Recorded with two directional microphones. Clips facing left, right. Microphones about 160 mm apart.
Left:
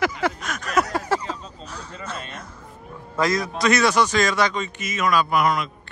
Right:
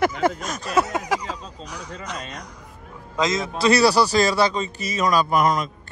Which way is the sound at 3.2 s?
20° right (ahead or behind).